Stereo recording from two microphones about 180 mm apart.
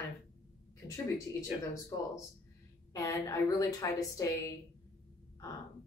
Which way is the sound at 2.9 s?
20° left (ahead or behind).